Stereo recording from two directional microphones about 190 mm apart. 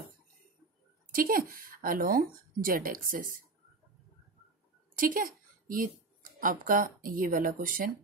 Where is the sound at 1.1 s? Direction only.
50° right (ahead or behind).